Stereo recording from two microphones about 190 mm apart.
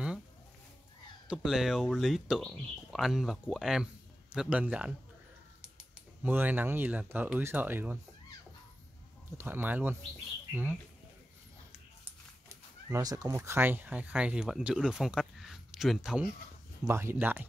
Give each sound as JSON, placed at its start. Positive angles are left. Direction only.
{"t": 1.3, "sound": "speech", "side_deg": -5}
{"t": 6.2, "sound": "speech", "side_deg": -10}
{"t": 9.4, "sound": "speech", "side_deg": -10}
{"t": 12.0, "sound": "speech", "side_deg": -15}
{"t": 16.8, "sound": "speech", "side_deg": -15}